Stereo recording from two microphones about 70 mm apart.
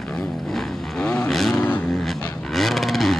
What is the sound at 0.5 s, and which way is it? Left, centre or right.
Vehicle, centre.